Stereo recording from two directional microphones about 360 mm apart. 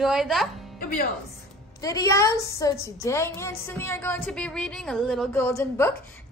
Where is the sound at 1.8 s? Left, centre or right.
Centre.